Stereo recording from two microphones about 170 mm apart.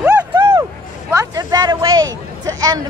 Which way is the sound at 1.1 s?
20° right (ahead or behind).